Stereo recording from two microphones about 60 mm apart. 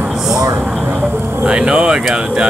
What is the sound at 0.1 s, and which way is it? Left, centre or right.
Vehicle, centre.